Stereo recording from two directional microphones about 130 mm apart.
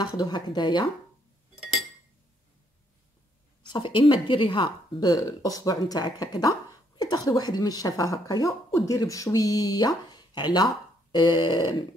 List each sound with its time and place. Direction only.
0.2 s a woman's voice: 30° left (ahead or behind)
1.6 s chink: centre (ahead or behind)
3.6 s a woman's voice: 40° left (ahead or behind)